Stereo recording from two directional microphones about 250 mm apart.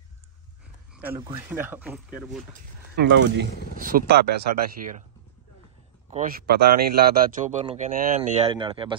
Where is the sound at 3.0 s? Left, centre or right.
Right.